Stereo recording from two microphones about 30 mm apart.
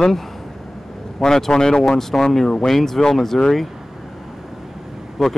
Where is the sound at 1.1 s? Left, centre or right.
Left.